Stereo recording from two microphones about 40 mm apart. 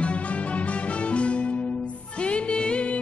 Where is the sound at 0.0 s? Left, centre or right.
Left.